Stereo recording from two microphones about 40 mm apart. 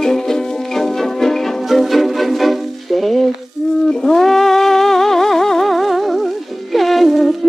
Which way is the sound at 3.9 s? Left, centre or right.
Centre.